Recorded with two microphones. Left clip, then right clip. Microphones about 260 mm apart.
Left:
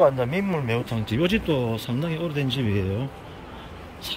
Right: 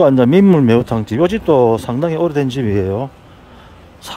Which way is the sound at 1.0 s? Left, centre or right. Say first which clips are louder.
Right 10 dB; centre.